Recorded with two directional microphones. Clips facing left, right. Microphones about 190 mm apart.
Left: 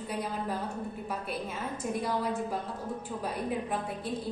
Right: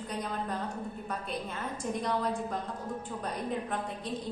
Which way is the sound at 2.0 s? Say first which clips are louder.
Right 1 dB; 5° left (ahead or behind).